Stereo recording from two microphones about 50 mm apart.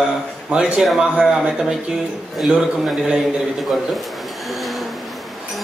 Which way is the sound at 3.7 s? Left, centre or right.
Centre.